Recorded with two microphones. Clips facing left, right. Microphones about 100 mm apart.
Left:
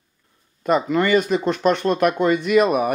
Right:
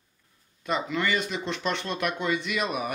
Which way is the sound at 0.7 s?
45° left (ahead or behind).